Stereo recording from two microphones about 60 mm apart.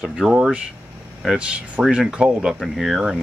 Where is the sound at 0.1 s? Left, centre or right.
Centre.